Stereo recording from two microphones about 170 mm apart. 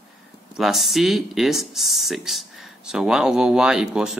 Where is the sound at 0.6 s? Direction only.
Centre (ahead or behind).